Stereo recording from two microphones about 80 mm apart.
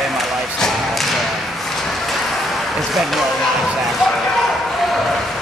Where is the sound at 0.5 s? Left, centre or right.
Centre.